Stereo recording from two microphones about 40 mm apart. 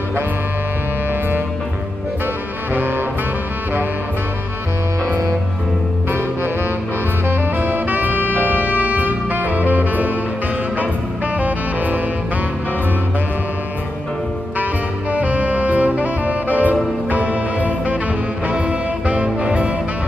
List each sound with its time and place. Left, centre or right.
2.7 s saxophone: right
7.2 s saxophone: right
11.3 s music: right
15.1 s saxophone: right
17.1 s music: right